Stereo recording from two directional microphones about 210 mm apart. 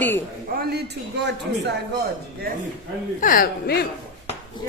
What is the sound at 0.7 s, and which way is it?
Speech, 55° right (ahead or behind).